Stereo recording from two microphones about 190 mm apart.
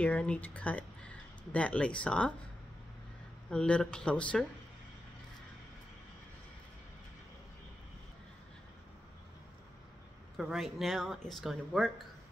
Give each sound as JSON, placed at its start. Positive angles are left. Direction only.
{"t": 0.0, "sound": "speech", "side_deg": 5}
{"t": 3.4, "sound": "speech", "side_deg": 5}
{"t": 10.3, "sound": "speech", "side_deg": 0}